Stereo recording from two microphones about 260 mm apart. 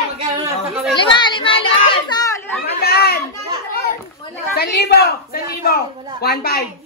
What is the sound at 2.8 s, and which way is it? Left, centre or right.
Children playing, left.